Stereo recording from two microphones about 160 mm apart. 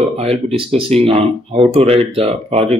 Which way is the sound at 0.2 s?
35° right (ahead or behind).